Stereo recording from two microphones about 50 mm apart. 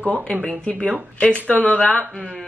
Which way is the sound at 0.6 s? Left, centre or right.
Left.